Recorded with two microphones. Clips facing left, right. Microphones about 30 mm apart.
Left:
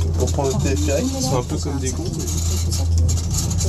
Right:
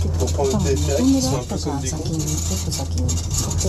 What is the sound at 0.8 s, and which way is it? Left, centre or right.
Speech, centre.